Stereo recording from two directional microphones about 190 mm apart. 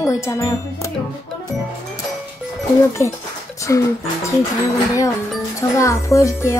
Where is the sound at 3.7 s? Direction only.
15° left (ahead or behind).